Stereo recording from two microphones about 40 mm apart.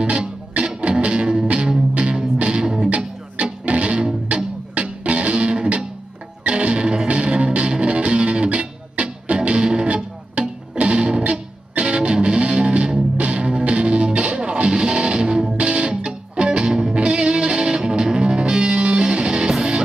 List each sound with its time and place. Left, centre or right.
0.0 s music: right